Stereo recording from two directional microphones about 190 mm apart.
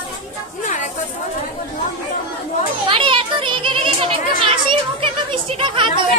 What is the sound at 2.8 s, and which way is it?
A child's voice, 25° right (ahead or behind).